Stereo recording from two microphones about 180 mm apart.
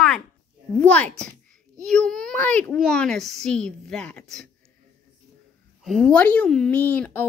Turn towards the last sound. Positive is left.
turn(degrees=10)  # may be behind; listen again after turning